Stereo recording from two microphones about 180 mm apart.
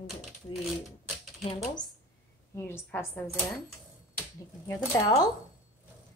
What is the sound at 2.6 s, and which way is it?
Speech, 10° left (ahead or behind).